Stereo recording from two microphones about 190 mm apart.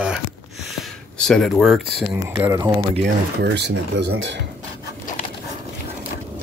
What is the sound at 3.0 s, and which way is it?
Speech, 65° right (ahead or behind).